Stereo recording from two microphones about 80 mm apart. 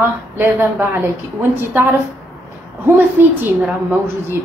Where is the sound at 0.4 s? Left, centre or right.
Right.